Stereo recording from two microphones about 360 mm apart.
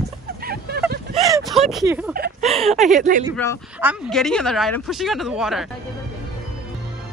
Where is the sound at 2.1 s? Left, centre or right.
Right.